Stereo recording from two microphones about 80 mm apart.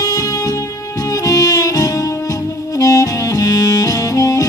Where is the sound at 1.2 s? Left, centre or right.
Left.